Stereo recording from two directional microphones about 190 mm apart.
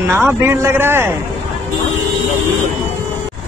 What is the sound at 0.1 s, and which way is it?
Speech, 10° right (ahead or behind).